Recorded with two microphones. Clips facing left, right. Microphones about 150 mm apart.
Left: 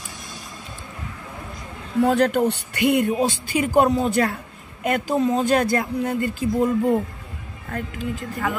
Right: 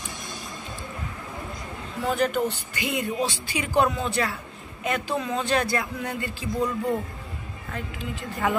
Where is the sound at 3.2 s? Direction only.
50° left (ahead or behind).